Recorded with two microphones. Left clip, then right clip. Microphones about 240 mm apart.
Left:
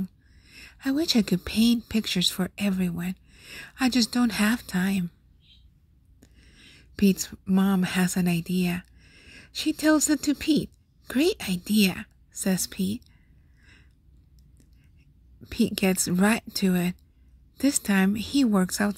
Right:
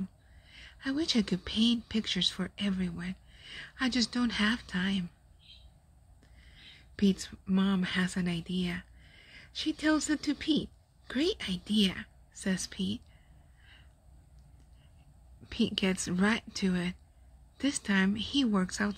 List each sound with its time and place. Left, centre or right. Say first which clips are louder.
0.4 s speech: left 6 dB; left
6.2 s speech: left 1 dB; left
15.4 s speech: left 5 dB; left